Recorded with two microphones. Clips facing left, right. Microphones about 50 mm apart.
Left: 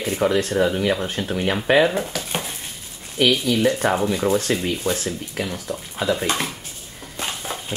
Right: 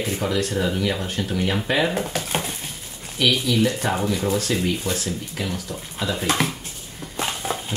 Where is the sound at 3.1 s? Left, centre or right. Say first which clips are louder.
Left 2 dB; left.